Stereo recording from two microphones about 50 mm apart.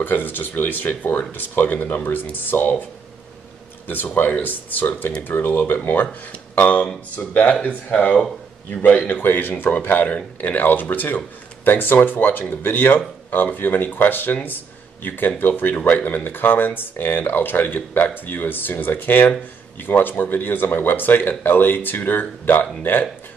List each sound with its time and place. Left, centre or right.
0.0 s speech: left
3.8 s speech: left
9.2 s speech: left